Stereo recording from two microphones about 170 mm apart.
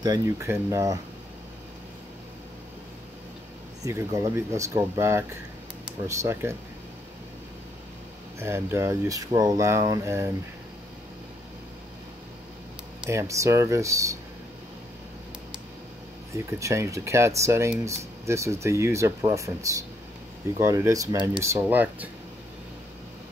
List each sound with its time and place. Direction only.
0.0 s speech: 20° right (ahead or behind)
3.8 s speech: 20° right (ahead or behind)
8.4 s speech: 15° right (ahead or behind)
13.0 s speech: 15° right (ahead or behind)
16.5 s speech: 15° right (ahead or behind)